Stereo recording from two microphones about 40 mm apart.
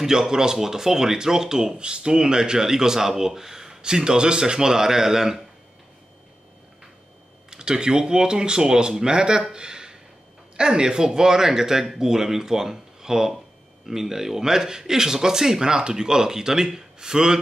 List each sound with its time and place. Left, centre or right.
0.0 s speech: centre
7.4 s speech: centre
9.5 s a sound: centre
10.5 s speech: centre